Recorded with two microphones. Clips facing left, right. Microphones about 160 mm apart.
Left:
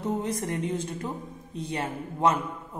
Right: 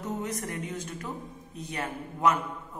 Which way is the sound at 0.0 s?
30° left (ahead or behind).